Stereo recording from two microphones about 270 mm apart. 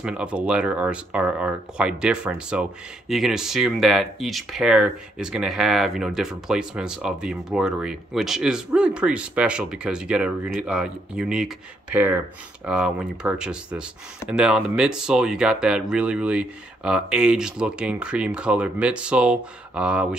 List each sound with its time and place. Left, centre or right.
0.0 s speech: centre